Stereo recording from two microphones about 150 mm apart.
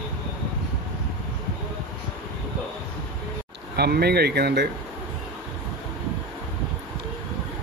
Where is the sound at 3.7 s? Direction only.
90° right.